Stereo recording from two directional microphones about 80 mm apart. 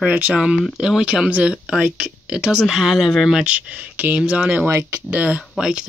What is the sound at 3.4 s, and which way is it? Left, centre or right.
Speech, centre.